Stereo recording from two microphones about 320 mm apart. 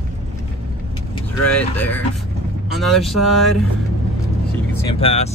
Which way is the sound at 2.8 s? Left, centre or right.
Centre.